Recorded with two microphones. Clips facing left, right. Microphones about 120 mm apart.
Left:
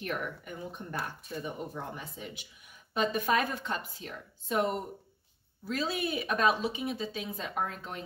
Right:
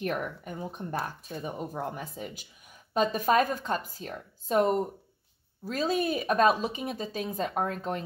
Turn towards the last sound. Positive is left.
turn(degrees=-45)  # may be behind; listen again after turning